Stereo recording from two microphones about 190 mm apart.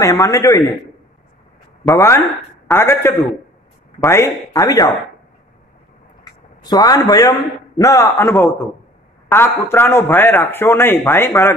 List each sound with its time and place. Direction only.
0.0 s a man's voice: 20° left (ahead or behind)
1.9 s a man's voice: 15° left (ahead or behind)
6.6 s a man's voice: 20° left (ahead or behind)